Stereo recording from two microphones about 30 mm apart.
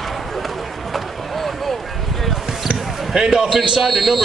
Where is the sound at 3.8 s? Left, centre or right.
Centre.